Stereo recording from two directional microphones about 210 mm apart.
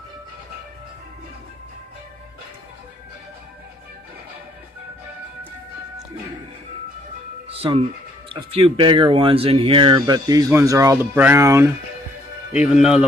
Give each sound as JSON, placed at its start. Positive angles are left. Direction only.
{"t": 7.4, "sound": "music", "side_deg": -25}
{"t": 8.3, "sound": "speech", "side_deg": -25}
{"t": 12.7, "sound": "speech", "side_deg": -5}